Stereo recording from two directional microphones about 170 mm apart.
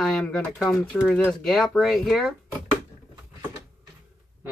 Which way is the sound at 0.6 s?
15° left (ahead or behind).